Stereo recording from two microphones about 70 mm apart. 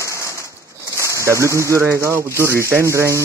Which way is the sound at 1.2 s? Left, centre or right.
Right.